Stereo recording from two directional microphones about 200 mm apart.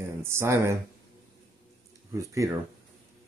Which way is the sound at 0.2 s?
10° right (ahead or behind).